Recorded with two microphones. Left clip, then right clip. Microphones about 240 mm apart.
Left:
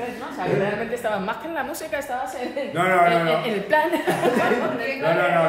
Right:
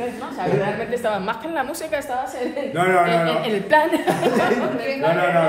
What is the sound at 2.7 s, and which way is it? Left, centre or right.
Speech, centre.